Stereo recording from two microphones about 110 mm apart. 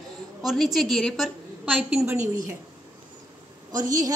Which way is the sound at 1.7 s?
10° right (ahead or behind).